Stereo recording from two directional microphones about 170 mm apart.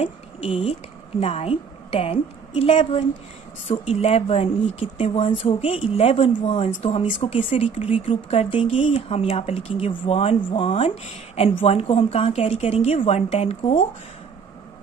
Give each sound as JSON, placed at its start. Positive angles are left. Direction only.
{"t": 0.0, "sound": "a woman's voice", "side_deg": 30}